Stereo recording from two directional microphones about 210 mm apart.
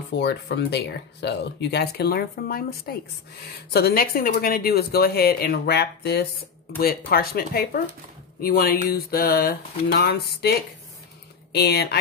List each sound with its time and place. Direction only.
0.1 s speech: 55° left (ahead or behind)
11.5 s speech: 50° left (ahead or behind)